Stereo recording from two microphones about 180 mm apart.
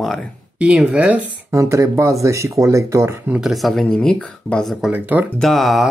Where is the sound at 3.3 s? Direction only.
Centre (ahead or behind).